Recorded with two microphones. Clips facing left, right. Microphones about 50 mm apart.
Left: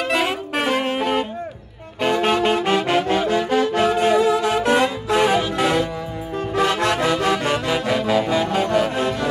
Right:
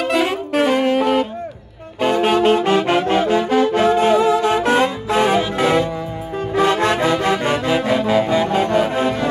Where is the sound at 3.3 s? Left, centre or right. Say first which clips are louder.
Right 3 dB; right.